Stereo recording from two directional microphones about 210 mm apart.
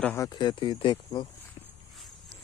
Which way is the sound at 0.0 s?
10° left (ahead or behind).